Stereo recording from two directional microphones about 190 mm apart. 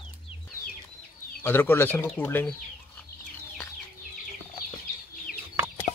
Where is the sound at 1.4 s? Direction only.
10° left (ahead or behind).